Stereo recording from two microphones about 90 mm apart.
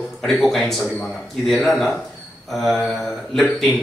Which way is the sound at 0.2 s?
5° left (ahead or behind).